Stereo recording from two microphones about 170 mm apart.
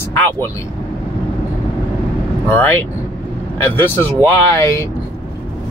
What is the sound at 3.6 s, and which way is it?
Speech, 15° left (ahead or behind).